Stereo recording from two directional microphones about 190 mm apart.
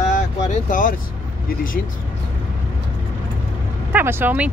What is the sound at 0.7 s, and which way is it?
Speech, 45° left (ahead or behind).